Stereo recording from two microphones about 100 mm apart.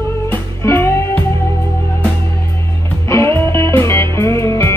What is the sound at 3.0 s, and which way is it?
Music, 25° left (ahead or behind).